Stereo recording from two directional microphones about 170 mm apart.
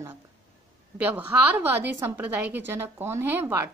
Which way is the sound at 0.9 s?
10° right (ahead or behind).